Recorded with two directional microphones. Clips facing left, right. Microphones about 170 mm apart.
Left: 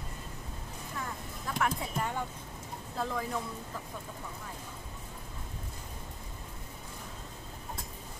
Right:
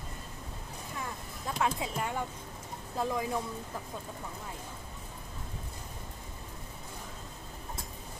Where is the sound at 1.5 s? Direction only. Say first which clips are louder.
Right 1 dB; 20° right (ahead or behind).